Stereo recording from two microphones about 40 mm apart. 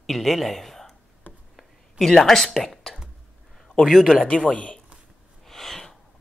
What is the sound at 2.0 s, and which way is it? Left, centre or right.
Speech, centre.